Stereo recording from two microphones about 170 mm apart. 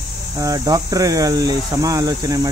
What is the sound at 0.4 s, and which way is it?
Speech, 20° right (ahead or behind).